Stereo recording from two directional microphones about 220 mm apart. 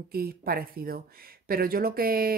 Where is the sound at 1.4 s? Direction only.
40° right (ahead or behind).